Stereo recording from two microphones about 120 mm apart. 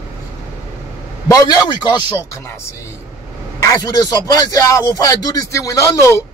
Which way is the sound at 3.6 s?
30° left (ahead or behind).